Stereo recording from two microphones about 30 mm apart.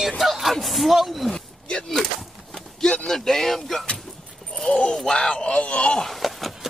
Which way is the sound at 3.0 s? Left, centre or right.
Centre.